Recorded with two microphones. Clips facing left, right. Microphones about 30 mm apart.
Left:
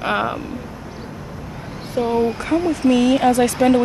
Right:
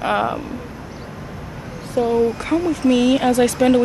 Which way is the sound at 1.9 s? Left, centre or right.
Centre.